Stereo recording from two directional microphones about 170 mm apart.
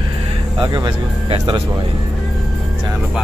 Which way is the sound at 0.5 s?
25° right (ahead or behind).